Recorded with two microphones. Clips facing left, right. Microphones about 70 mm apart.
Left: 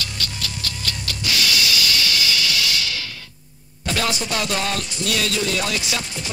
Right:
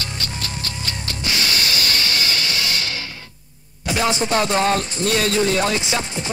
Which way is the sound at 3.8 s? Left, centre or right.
Right.